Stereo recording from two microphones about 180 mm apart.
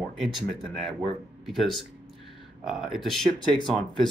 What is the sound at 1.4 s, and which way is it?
Speech, centre (ahead or behind).